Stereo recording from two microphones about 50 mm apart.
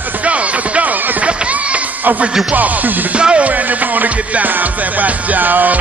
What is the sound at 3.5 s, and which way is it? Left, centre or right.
Music, right.